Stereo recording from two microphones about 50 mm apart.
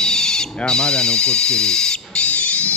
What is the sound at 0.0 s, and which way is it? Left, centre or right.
Speech, centre.